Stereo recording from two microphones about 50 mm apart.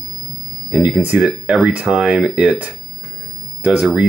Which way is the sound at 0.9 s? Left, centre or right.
Right.